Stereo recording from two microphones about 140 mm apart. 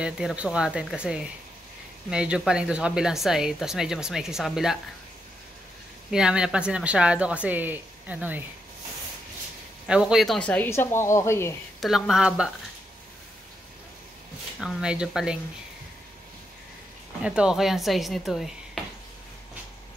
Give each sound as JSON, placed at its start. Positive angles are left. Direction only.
{"t": 0.0, "sound": "a woman's voice", "side_deg": -5}
{"t": 6.0, "sound": "a woman's voice", "side_deg": -5}
{"t": 9.8, "sound": "a woman's voice", "side_deg": -5}
{"t": 10.7, "sound": "speech", "side_deg": 20}
{"t": 11.8, "sound": "a woman's voice", "side_deg": 0}
{"t": 14.6, "sound": "a woman's voice", "side_deg": -5}
{"t": 17.2, "sound": "a woman's voice", "side_deg": -5}